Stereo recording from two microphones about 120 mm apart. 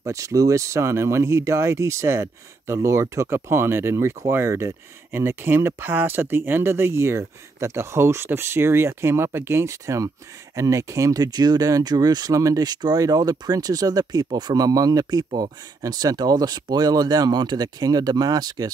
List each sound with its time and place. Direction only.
0.0 s speech: 25° right (ahead or behind)